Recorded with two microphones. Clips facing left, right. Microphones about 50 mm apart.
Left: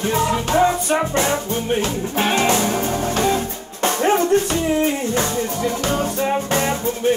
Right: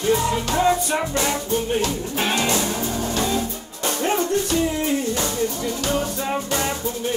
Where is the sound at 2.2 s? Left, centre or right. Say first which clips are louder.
Left 4 dB; left.